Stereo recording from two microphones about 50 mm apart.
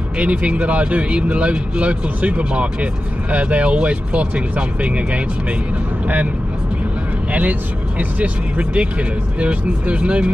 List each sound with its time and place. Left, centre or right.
0.2 s speech: right
8.0 s speech: right